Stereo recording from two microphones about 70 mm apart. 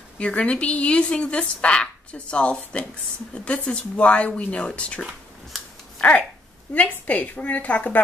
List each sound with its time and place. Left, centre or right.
0.2 s a woman's voice: centre